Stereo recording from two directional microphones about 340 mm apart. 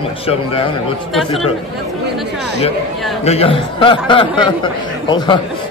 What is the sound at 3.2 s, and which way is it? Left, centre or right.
Speech, centre.